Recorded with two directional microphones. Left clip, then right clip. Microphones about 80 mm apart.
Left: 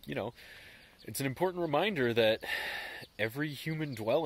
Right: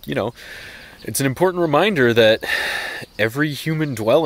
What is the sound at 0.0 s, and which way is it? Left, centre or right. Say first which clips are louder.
Speech: right 15 dB; right.